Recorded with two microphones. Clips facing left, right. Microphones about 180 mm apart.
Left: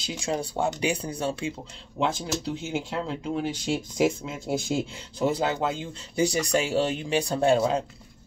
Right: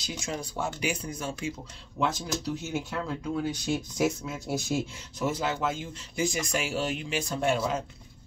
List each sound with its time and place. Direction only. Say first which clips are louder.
0.0 s speech: left 5 dB; 30° left (ahead or behind)
3.4 s speech: left 1 dB; 90° left
3.7 s speech: left 4 dB; 30° left (ahead or behind)